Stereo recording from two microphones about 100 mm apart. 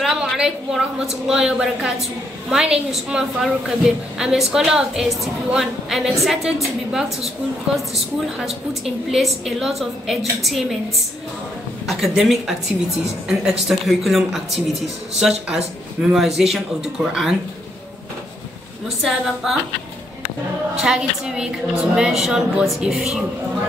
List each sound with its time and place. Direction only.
0.0 s a woman's voice: 5° right (ahead or behind)
11.8 s a woman's voice: centre (ahead or behind)
13.7 s a woman's voice: centre (ahead or behind)
19.4 s a woman's voice: 5° right (ahead or behind)
20.8 s a woman's voice: 5° right (ahead or behind)